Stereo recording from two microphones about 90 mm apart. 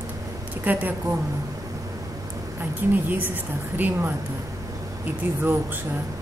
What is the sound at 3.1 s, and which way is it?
A woman's voice, 20° right (ahead or behind).